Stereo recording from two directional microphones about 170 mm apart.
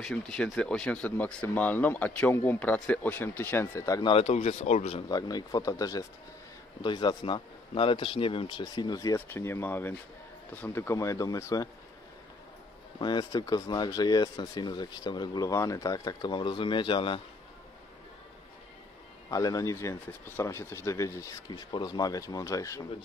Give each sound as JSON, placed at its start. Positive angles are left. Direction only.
{"t": 0.0, "sound": "speech", "side_deg": 5}
{"t": 4.1, "sound": "speech", "side_deg": 40}
{"t": 5.0, "sound": "speech", "side_deg": 25}
{"t": 13.0, "sound": "speech", "side_deg": 25}
{"t": 19.3, "sound": "speech", "side_deg": 20}